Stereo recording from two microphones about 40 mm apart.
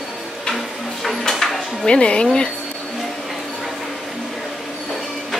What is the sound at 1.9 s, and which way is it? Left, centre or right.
Speech, left.